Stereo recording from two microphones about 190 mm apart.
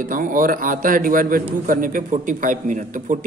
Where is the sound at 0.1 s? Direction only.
45° right (ahead or behind).